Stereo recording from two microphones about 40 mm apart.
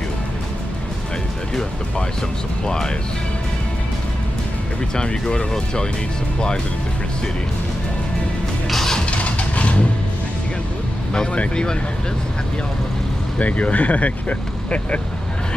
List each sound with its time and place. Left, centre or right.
2.6 s speech: centre
4.9 s speech: centre
8.6 s music: centre
9.1 s vehicle: left
13.4 s speech: left